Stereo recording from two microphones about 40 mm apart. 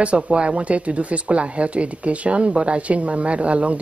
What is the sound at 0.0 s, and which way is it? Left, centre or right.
Speech, right.